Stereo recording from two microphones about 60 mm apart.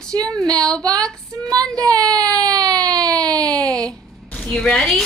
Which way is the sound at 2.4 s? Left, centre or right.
Right.